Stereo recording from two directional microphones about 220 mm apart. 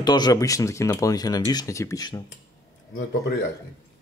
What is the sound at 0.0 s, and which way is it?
Speech, 20° left (ahead or behind).